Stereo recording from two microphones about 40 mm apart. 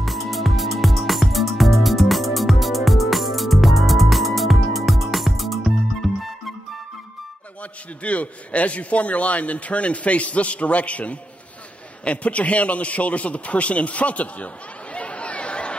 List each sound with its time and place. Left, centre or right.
0.0 s music: centre
8.0 s a man's voice: left